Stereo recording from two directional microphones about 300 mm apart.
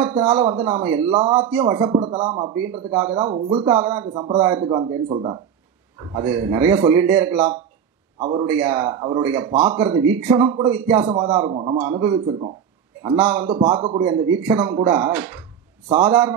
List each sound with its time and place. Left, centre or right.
0.0 s speech: centre
2.5 s speech: centre
3.2 s speech: centre
13.7 s speech: centre